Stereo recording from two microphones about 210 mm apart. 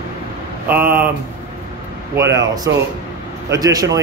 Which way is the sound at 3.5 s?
15° right (ahead or behind).